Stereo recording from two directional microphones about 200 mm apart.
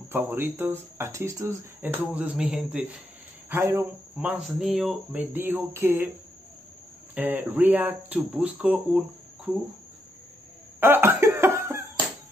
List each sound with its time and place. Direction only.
0.1 s speech: 10° right (ahead or behind)
7.2 s speech: 10° right (ahead or behind)
10.8 s cough: 10° right (ahead or behind)